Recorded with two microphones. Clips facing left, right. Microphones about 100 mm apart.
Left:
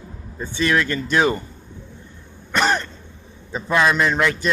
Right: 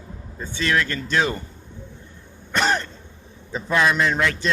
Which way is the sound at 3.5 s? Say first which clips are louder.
Left 2 dB; 15° left (ahead or behind).